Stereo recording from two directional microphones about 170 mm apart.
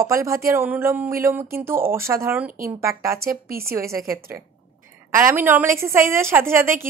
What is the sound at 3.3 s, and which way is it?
Speech, 60° right (ahead or behind).